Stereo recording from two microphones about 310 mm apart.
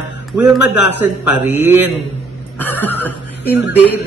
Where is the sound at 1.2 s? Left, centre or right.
Centre.